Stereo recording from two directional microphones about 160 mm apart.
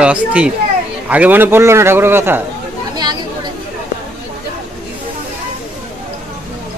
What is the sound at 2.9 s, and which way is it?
Speech, 25° right (ahead or behind).